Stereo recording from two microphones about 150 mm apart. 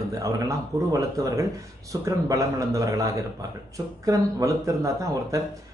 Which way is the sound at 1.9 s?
20° right (ahead or behind).